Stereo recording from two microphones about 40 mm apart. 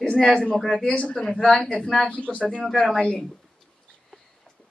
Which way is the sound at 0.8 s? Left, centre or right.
Left.